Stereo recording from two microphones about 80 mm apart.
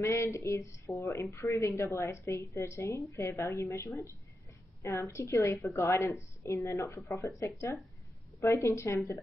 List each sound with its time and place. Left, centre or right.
0.0 s a woman's voice: left